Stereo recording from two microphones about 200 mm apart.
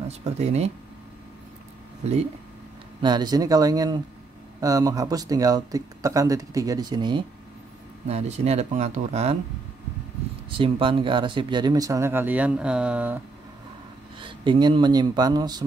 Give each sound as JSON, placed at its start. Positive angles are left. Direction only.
{"t": 0.2, "sound": "speech", "side_deg": -35}
{"t": 3.0, "sound": "speech", "side_deg": -20}
{"t": 8.1, "sound": "speech", "side_deg": -30}
{"t": 10.6, "sound": "speech", "side_deg": -25}
{"t": 14.2, "sound": "speech", "side_deg": -25}